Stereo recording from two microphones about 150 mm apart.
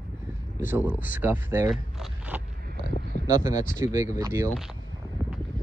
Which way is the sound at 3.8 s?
50° left (ahead or behind).